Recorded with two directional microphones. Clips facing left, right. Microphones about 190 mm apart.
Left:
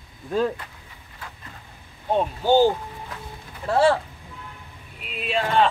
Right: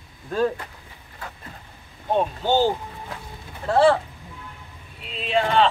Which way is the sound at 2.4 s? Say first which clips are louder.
Left 5 dB; 10° left (ahead or behind).